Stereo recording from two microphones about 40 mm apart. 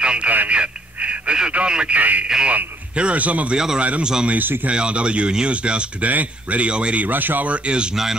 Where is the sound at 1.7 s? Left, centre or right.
Right.